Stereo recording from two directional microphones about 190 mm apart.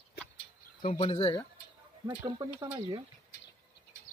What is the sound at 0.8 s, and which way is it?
Speech, 30° left (ahead or behind).